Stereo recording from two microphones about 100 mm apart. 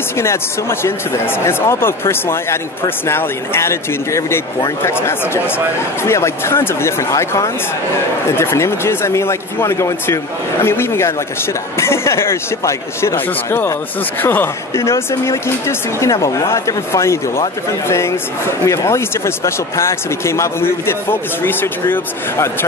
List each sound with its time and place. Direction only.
0.2 s speech: 25° left (ahead or behind)